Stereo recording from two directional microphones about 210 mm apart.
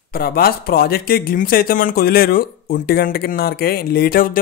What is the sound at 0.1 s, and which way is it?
Speech, 45° left (ahead or behind).